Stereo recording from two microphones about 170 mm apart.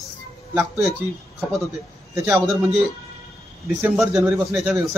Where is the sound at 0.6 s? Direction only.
15° right (ahead or behind).